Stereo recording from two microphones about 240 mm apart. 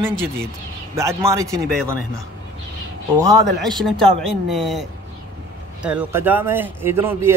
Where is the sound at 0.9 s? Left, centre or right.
Centre.